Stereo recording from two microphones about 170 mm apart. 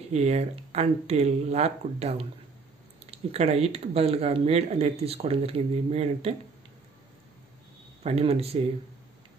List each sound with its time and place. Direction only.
0.1 s speech: 40° right (ahead or behind)
8.0 s speech: 35° right (ahead or behind)